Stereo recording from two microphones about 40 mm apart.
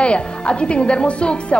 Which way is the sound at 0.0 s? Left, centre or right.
Left.